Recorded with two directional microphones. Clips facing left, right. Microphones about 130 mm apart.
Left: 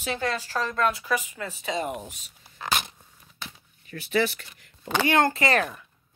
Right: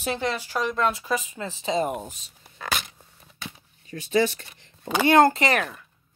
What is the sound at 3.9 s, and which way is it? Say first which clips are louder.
Speech: right 3 dB; 25° right (ahead or behind).